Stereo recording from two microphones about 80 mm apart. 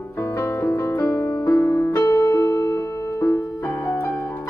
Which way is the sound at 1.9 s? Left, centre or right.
Left.